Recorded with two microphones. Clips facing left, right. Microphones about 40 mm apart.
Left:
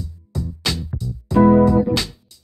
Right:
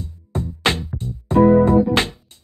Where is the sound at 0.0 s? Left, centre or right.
Right.